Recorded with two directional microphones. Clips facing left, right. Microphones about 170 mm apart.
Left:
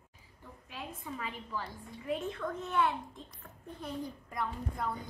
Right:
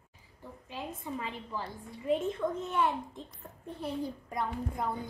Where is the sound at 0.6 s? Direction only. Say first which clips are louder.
Right 4 dB; 20° right (ahead or behind).